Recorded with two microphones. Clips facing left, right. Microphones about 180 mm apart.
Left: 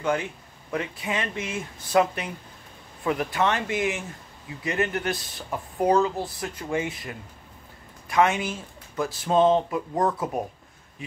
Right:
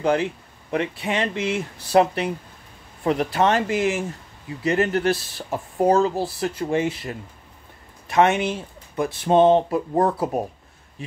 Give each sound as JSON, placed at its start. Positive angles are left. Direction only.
{"t": 0.0, "sound": "speech", "side_deg": -30}
{"t": 5.9, "sound": "speech", "side_deg": -40}